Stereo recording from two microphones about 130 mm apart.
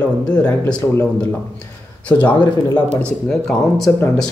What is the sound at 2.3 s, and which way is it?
Speech, 40° left (ahead or behind).